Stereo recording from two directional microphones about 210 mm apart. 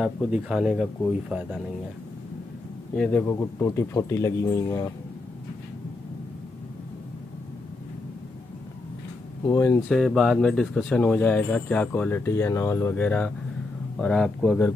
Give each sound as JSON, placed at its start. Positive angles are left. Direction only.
{"t": 0.0, "sound": "speech", "side_deg": -5}
{"t": 3.0, "sound": "speech", "side_deg": 10}
{"t": 9.4, "sound": "speech", "side_deg": 15}